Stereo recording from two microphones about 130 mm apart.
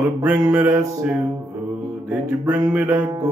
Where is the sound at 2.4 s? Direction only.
30° right (ahead or behind).